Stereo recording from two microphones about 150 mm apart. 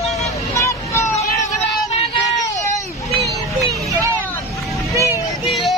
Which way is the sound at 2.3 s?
20° left (ahead or behind).